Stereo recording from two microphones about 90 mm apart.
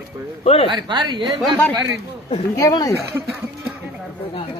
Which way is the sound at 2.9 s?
30° right (ahead or behind).